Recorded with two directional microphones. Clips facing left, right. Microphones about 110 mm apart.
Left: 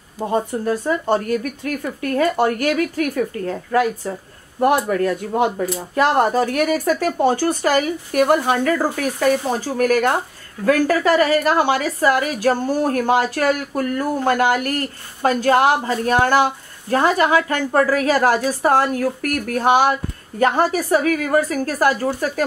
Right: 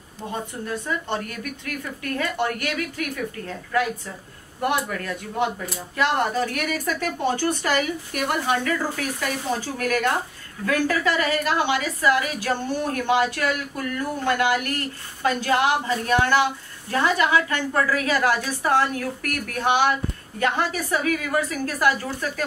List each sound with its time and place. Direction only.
0.2 s a woman's voice: 45° left (ahead or behind)